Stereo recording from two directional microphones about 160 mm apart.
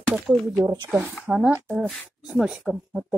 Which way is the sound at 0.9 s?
10° right (ahead or behind).